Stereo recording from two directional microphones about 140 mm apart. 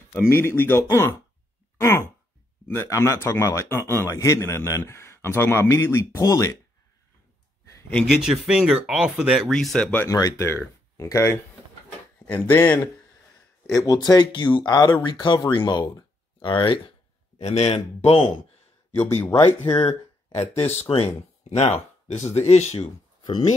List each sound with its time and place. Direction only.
0.1 s a man's voice: 15° left (ahead or behind)
7.9 s speech: 5° right (ahead or behind); by 12.8 s 10° left (ahead or behind)
13.7 s speech: 25° left (ahead or behind)
17.4 s a man's voice: 50° left (ahead or behind)
18.9 s speech: 15° left (ahead or behind)
19.8 s a sound: 35° left (ahead or behind)
20.3 s a man's voice: 50° left (ahead or behind)